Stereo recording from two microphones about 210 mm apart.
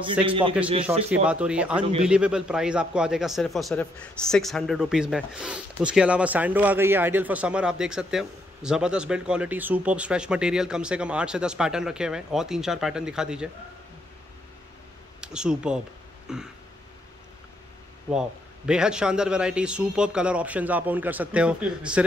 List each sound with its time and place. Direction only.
0.2 s a man's voice: 25° right (ahead or behind); by 13.5 s 5° right (ahead or behind)
15.1 s a man's voice: 5° right (ahead or behind)
18.7 s a man's voice: 5° right (ahead or behind)